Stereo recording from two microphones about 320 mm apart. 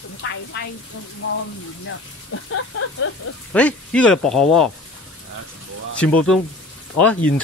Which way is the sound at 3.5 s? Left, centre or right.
Centre.